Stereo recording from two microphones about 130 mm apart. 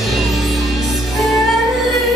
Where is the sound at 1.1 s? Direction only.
Centre (ahead or behind).